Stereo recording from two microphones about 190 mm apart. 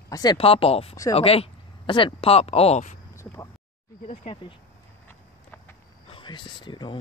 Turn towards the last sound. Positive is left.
turn(degrees=25)  # may be behind; listen again after turning